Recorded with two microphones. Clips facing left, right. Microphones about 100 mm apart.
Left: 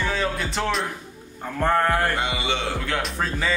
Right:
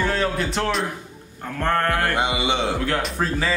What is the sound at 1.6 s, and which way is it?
Mantra, 15° left (ahead or behind).